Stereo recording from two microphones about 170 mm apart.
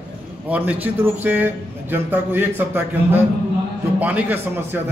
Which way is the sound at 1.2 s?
10° right (ahead or behind).